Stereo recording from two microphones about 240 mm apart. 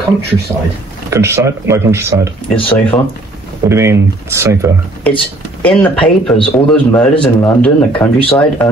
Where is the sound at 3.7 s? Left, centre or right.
Centre.